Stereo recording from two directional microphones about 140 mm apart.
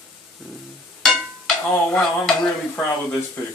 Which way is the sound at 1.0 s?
5° left (ahead or behind).